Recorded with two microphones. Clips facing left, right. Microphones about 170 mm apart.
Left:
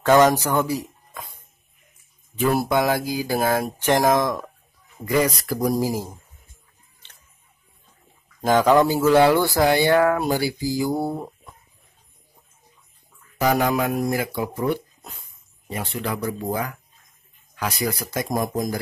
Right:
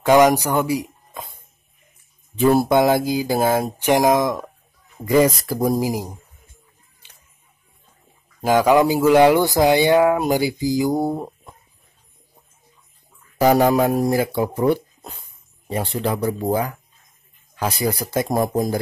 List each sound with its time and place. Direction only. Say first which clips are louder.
0.0 s speech: right 2 dB; 15° right (ahead or behind)
2.3 s speech: right 5 dB; 25° right (ahead or behind)
8.4 s speech: right 1 dB; 10° right (ahead or behind)
13.4 s speech: right 5 dB; 30° right (ahead or behind)